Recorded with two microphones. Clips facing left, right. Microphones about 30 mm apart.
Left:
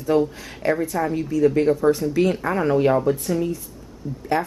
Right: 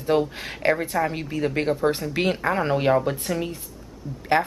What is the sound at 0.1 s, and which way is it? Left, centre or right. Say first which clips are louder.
Speech: left 4 dB; right.